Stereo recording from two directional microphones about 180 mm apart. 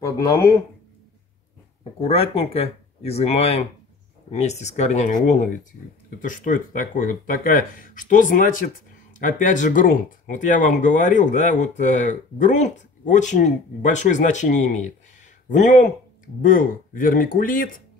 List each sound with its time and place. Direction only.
0.0 s speech: 20° left (ahead or behind)
2.0 s speech: 35° left (ahead or behind); by 17.8 s 50° left (ahead or behind)